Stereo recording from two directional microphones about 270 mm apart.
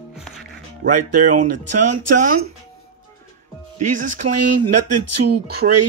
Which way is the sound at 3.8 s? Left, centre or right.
Right.